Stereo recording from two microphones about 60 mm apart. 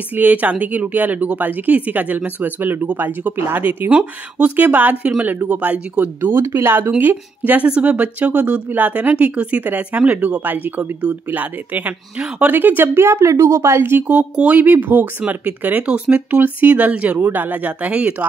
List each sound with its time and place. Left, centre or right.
0.1 s speech: right
3.9 s speech: right
6.3 s speech: right
7.0 s speech: right
13.0 s speech: right
14.0 s speech: right
15.1 s speech: right